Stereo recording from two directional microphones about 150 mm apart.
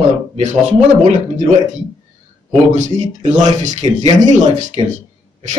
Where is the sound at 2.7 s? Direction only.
55° right (ahead or behind).